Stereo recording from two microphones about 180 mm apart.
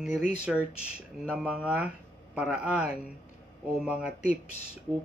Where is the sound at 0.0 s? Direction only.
5° right (ahead or behind).